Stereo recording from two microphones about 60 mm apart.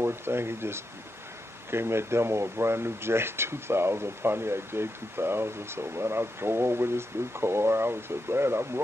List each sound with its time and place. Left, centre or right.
0.0 s speech: right